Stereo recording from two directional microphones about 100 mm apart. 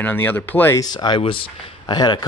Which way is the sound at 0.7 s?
45° left (ahead or behind).